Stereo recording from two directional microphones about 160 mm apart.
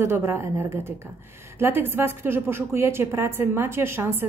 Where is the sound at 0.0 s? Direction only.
15° right (ahead or behind).